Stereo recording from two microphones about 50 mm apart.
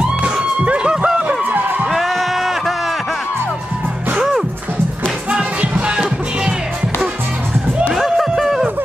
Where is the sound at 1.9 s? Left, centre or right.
Centre.